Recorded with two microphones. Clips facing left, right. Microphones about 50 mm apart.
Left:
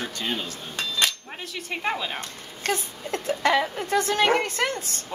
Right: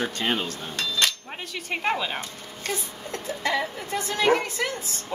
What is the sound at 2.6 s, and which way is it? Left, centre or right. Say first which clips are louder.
A woman's voice: left 4 dB; left.